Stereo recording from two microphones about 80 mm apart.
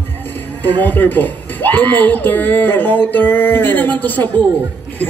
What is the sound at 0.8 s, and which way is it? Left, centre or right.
Speech, left.